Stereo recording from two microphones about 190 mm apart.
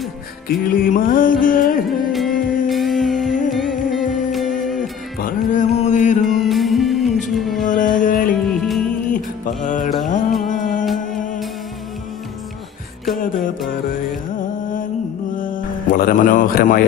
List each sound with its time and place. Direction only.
0.7 s music: 45° left (ahead or behind)
1.9 s music: centre (ahead or behind)
5.2 s music: 40° left (ahead or behind)
6.2 s music: centre (ahead or behind)
8.0 s music: 45° left (ahead or behind)
8.5 s music: centre (ahead or behind)
9.1 s music: 40° left (ahead or behind)
15.3 s mantra: 45° left (ahead or behind)